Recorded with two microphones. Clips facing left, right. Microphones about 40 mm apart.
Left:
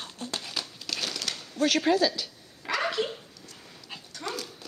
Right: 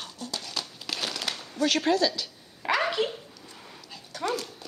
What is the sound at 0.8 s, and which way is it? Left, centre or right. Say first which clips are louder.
Crushing: right 3 dB; centre.